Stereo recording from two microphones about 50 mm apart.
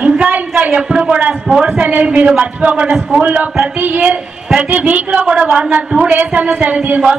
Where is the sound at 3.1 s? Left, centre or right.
Right.